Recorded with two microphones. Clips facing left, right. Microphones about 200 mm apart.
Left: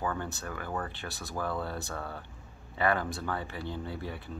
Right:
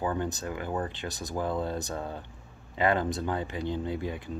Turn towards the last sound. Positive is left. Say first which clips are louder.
# right 6 dB
turn(degrees=-20)  # may be behind; listen again after turning